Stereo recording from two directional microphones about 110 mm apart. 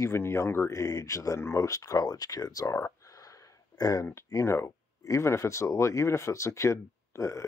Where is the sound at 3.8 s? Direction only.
35° left (ahead or behind).